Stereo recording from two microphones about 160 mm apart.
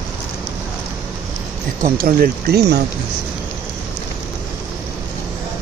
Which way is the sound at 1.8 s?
65° right (ahead or behind).